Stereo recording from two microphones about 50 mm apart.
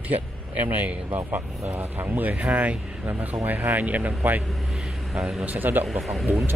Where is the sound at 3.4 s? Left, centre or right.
Right.